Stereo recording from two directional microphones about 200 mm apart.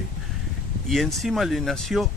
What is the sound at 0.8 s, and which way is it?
Speech, centre (ahead or behind).